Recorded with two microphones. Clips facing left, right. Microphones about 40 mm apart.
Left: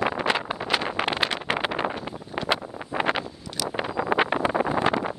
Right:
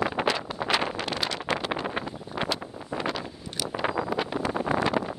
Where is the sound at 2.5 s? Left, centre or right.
Left.